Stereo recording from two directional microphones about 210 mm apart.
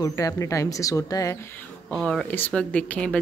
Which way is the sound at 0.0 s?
15° left (ahead or behind).